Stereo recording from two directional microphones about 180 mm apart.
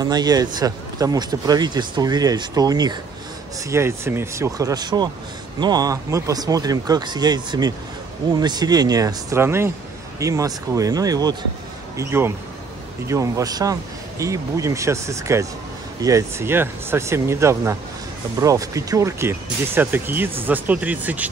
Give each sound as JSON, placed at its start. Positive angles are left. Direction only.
{"t": 0.0, "sound": "speech", "side_deg": -20}